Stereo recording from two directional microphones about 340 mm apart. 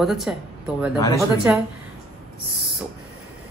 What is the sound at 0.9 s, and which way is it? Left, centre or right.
Speech, centre.